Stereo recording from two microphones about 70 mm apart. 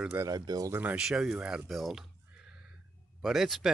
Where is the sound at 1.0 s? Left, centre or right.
Centre.